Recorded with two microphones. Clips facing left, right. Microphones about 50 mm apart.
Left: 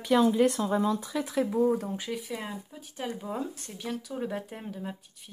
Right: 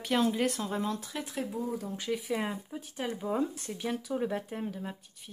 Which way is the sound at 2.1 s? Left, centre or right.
Centre.